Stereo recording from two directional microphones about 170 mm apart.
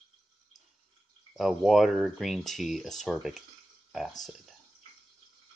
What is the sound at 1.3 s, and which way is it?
Speech, centre (ahead or behind).